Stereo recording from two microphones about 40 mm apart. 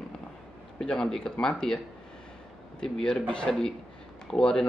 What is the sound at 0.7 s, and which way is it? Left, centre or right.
Speech, centre.